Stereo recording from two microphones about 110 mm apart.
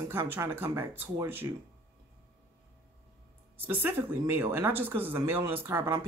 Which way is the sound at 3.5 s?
20° right (ahead or behind).